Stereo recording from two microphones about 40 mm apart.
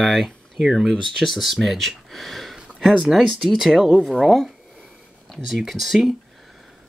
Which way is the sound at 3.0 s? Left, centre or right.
Centre.